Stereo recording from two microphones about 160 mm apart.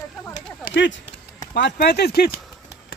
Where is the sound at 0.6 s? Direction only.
90° left.